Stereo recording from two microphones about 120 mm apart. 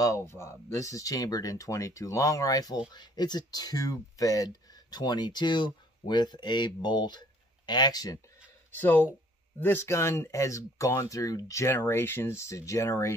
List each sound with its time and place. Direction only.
0.0 s speech: 25° left (ahead or behind)
8.7 s speech: 15° left (ahead or behind)